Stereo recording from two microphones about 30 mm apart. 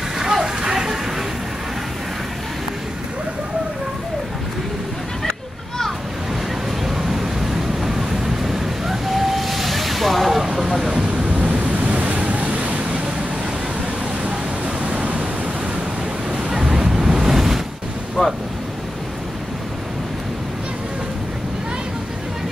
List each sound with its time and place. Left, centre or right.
0.2 s a sound: centre
7.0 s waves: centre
10.4 s vehicle: centre
10.9 s waves: right
11.2 s waves: right
12.4 s waves: right
14.8 s waves: right
16.5 s waves: centre
18.2 s ocean: left